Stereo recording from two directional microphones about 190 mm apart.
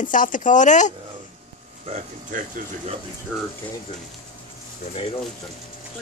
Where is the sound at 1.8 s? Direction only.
40° right (ahead or behind).